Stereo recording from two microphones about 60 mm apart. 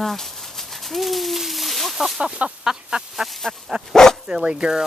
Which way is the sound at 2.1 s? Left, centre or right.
Centre.